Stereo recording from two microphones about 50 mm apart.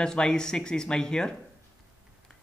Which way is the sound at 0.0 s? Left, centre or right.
Centre.